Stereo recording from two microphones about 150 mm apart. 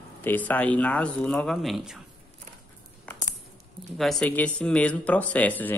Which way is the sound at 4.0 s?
5° left (ahead or behind).